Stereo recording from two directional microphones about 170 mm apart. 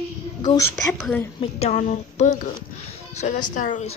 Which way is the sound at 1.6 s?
45° left (ahead or behind).